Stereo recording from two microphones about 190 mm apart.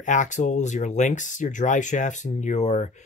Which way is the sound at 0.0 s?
40° left (ahead or behind).